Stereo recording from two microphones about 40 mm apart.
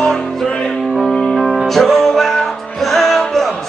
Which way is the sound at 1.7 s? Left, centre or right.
Centre.